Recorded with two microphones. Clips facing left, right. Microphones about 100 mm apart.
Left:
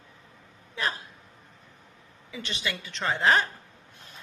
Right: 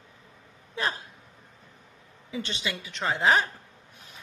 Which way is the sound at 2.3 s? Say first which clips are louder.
Right 1 dB; 30° right (ahead or behind).